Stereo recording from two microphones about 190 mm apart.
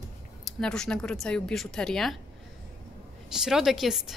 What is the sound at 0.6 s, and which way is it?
Speech, 5° left (ahead or behind).